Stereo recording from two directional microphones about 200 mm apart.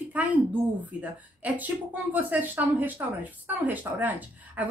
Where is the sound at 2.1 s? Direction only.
10° right (ahead or behind).